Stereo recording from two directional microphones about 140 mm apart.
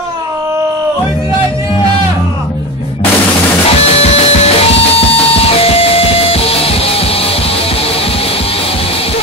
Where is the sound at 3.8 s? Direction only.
45° left (ahead or behind).